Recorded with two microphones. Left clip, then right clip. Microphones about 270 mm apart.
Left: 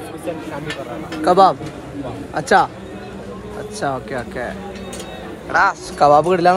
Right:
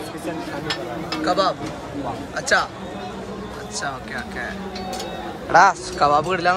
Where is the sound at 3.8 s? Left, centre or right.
Centre.